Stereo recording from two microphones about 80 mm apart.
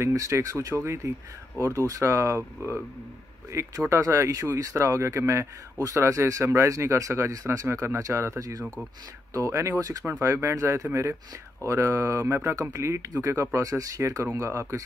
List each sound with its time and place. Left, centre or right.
0.0 s speech: right
3.8 s speech: right
10.0 s speech: right